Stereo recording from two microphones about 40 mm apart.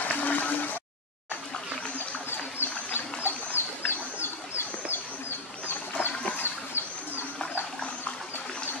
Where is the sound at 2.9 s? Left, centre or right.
Left.